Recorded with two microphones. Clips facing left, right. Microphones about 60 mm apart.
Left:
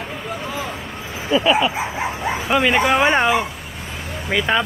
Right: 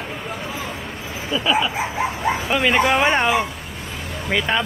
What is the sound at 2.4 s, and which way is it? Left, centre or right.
Speech, centre.